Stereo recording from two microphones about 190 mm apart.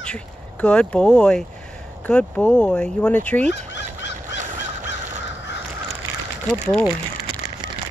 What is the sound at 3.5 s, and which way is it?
Fowl, 65° left (ahead or behind).